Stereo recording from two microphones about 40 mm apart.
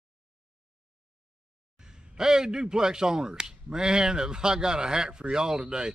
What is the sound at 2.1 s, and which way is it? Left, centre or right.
A man's voice, centre.